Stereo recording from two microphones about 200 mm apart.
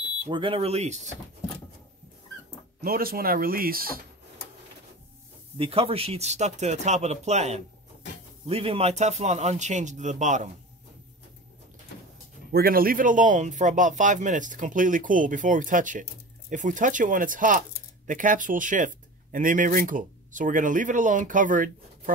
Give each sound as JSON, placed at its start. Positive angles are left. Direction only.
{"t": 0.3, "sound": "speech", "side_deg": -25}
{"t": 2.8, "sound": "speech", "side_deg": -45}
{"t": 5.6, "sound": "speech", "side_deg": -30}
{"t": 12.5, "sound": "speech", "side_deg": -45}